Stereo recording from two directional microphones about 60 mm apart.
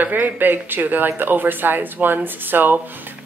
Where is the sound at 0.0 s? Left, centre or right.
Right.